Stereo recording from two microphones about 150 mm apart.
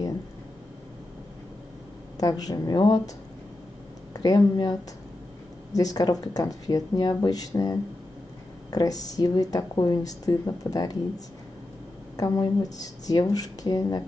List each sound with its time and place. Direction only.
2.1 s speech: 25° left (ahead or behind)
4.1 s speech: 25° left (ahead or behind)
5.8 s speech: 25° left (ahead or behind)
12.2 s speech: 25° left (ahead or behind)